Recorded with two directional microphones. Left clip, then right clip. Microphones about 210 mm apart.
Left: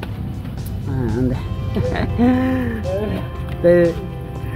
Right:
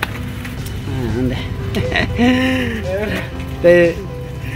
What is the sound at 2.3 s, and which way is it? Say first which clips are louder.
Speech: right 3 dB; 20° right (ahead or behind).